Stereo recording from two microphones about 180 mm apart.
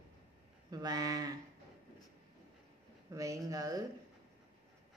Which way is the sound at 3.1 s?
20° right (ahead or behind).